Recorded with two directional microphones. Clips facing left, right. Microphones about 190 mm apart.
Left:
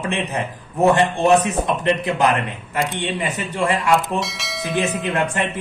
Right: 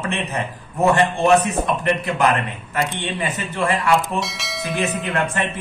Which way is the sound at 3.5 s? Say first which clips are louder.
Left 1 dB; 15° left (ahead or behind).